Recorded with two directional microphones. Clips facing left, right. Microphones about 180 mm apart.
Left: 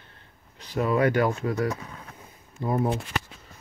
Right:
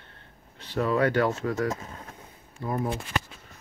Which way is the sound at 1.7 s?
25° right (ahead or behind).